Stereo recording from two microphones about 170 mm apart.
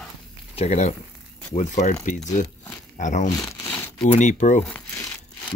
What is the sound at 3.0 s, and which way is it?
Speech, 45° left (ahead or behind).